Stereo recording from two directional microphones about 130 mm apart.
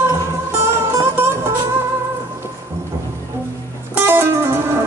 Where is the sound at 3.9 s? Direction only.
15° right (ahead or behind).